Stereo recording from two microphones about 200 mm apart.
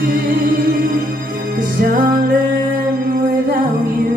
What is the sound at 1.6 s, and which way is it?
Music, 45° right (ahead or behind).